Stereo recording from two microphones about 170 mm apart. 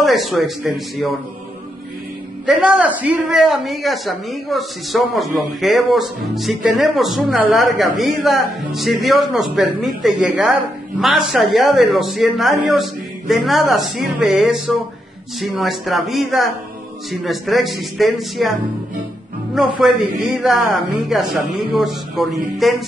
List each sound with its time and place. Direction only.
0.0 s a man's voice: centre (ahead or behind)
2.4 s a man's voice: 5° right (ahead or behind)
19.5 s a man's voice: centre (ahead or behind)